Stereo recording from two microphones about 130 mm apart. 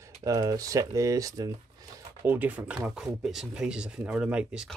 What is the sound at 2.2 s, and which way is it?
Speech, 15° right (ahead or behind).